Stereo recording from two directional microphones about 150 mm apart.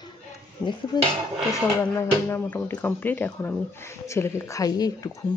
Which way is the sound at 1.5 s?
15° left (ahead or behind).